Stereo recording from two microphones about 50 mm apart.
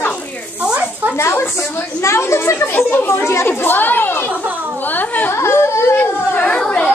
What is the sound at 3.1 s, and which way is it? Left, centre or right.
Speech, left.